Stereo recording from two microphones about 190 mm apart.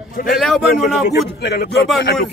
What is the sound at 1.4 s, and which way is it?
Speech, 60° left (ahead or behind).